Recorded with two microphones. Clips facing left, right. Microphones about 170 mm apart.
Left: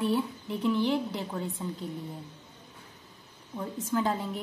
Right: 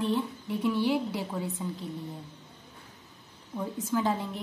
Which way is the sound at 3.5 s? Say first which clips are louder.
Right 1 dB; 5° right (ahead or behind).